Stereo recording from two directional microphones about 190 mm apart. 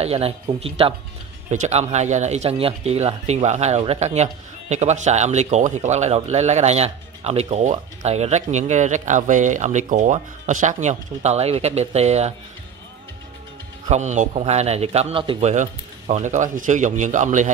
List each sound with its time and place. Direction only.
0.0 s speech: 30° right (ahead or behind)
13.8 s speech: 35° right (ahead or behind)